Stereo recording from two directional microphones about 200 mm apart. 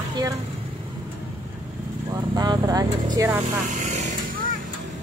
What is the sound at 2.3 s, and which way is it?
Vehicle, 20° right (ahead or behind).